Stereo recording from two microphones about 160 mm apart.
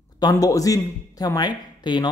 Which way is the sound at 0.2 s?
25° left (ahead or behind).